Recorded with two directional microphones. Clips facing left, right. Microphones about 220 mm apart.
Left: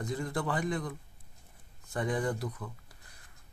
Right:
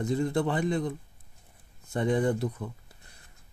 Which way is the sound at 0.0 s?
25° right (ahead or behind).